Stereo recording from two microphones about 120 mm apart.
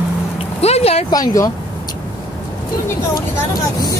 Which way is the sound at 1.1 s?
25° left (ahead or behind).